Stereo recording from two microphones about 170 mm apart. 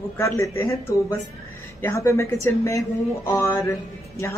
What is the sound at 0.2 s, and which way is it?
Speech, 15° left (ahead or behind).